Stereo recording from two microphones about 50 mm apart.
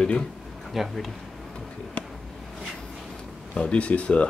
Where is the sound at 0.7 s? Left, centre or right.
Centre.